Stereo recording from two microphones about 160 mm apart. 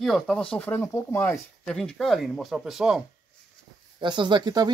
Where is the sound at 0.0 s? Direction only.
Centre (ahead or behind).